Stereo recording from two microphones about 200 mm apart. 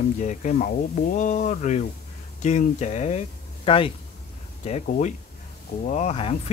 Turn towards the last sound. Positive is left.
turn(degrees=30)  # may be behind; listen again after turning